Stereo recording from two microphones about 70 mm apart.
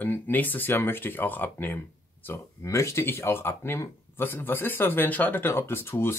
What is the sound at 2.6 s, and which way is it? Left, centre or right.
Speech, left.